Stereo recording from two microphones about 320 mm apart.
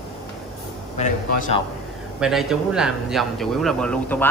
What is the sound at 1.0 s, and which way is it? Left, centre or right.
Speech, left.